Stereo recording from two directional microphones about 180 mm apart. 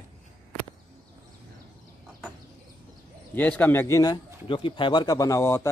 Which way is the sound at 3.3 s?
10° left (ahead or behind).